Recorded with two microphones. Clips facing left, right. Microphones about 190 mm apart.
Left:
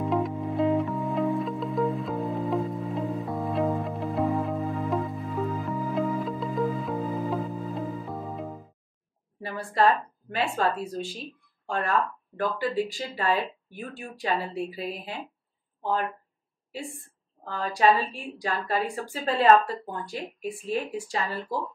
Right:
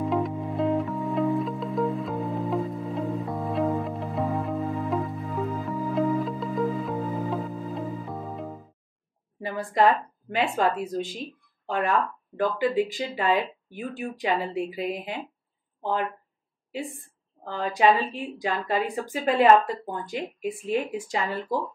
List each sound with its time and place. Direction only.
0.1 s music: centre (ahead or behind)
9.4 s speech: 15° right (ahead or behind)
11.6 s speech: 15° right (ahead or behind)
17.5 s speech: 20° right (ahead or behind)